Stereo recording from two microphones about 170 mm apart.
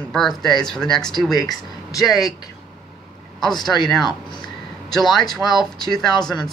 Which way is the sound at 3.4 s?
Centre (ahead or behind).